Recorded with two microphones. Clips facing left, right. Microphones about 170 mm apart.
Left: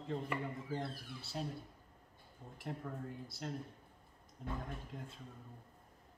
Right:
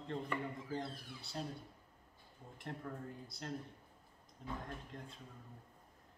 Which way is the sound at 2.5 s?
5° left (ahead or behind).